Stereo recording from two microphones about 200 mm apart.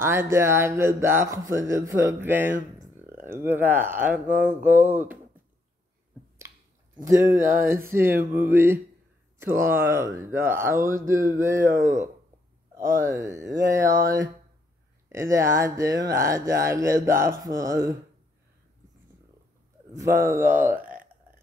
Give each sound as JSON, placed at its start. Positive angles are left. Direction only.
{"t": 0.0, "sound": "speech", "side_deg": -10}
{"t": 7.1, "sound": "speech", "side_deg": -15}
{"t": 13.0, "sound": "speech", "side_deg": -15}
{"t": 19.9, "sound": "speech", "side_deg": -15}
{"t": 20.8, "sound": "a sound", "side_deg": -45}